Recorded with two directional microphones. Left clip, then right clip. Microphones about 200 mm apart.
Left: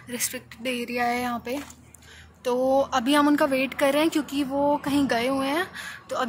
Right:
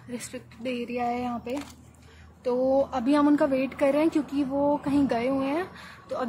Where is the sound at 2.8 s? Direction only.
Centre (ahead or behind).